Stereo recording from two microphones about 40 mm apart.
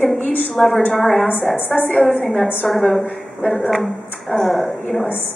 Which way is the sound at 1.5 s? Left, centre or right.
Left.